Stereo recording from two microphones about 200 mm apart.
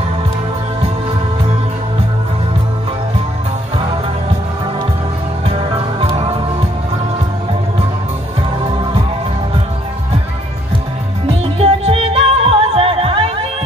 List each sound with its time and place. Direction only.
5.5 s music: 30° right (ahead or behind)
11.5 s music: 30° right (ahead or behind)